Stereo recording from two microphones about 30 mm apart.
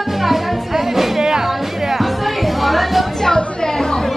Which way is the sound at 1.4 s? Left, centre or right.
Centre.